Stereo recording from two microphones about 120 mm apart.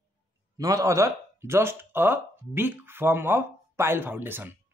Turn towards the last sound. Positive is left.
turn(degrees=-15)  # may be behind; listen again after turning